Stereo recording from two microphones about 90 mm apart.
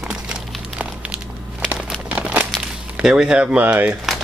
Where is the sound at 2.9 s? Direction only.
10° right (ahead or behind).